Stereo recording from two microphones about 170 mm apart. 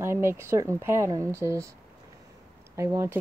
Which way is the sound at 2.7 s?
15° right (ahead or behind).